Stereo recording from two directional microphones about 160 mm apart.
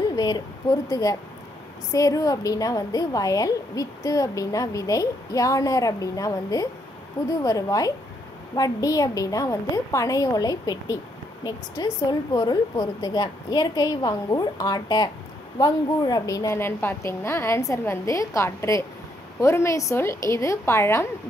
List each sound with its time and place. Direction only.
0.1 s a woman's voice: 25° left (ahead or behind)